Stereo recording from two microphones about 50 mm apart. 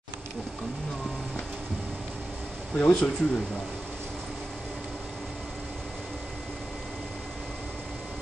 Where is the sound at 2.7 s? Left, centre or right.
Left.